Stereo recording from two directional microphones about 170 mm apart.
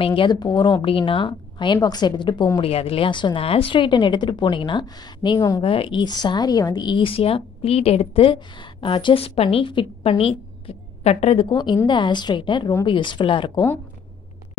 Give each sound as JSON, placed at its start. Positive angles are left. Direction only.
{"t": 0.0, "sound": "speech", "side_deg": 30}
{"t": 2.6, "sound": "speech", "side_deg": 35}